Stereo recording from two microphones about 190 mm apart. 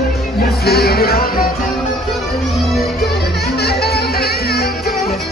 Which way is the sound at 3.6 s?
55° left (ahead or behind).